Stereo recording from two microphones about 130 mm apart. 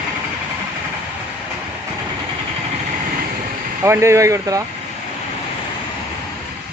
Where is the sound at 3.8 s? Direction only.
20° right (ahead or behind).